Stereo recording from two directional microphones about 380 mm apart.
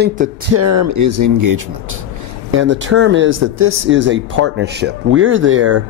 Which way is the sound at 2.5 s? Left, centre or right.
Right.